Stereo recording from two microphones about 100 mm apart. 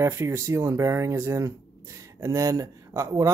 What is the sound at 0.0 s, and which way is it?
Speech, 25° right (ahead or behind).